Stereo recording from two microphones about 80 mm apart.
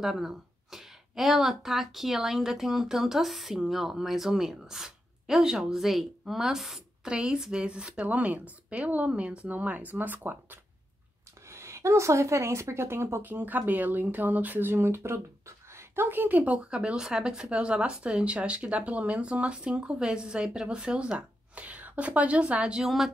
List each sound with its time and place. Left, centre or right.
0.0 s speech: centre; by 10.6 s right
11.4 s a woman's voice: right; by 23.1 s centre